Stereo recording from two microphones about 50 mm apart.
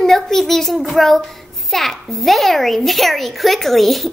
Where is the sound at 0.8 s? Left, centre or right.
Centre.